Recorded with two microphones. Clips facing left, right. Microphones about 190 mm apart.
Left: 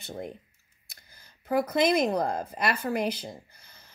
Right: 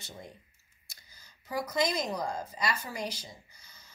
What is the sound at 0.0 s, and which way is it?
Speech, 60° left (ahead or behind).